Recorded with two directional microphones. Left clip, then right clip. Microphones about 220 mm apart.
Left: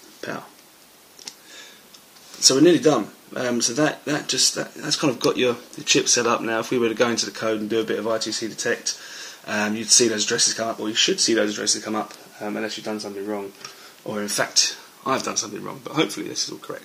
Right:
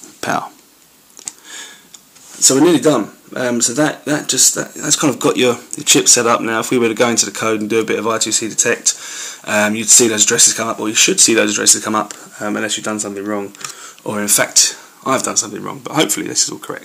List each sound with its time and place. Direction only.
2.4 s speech: 15° right (ahead or behind); by 13.4 s 50° right (ahead or behind)
14.1 s speech: 35° right (ahead or behind)
15.0 s speech: 10° right (ahead or behind); by 16.7 s 30° right (ahead or behind)